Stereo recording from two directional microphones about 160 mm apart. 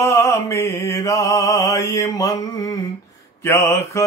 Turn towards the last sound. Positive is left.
turn(degrees=15)  # may be behind; listen again after turning